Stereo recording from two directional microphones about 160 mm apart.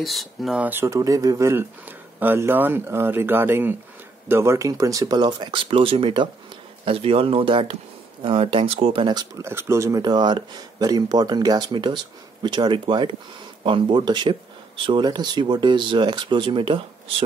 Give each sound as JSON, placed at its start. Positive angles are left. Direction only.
{"t": 0.0, "sound": "speech", "side_deg": 0}